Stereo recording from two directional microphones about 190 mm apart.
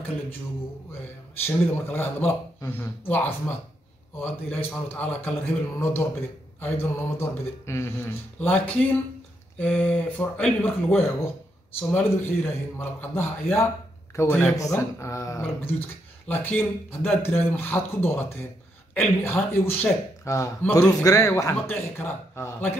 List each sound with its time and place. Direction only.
1.4 s a man's voice: 10° left (ahead or behind)
19.6 s a man's voice: 15° left (ahead or behind)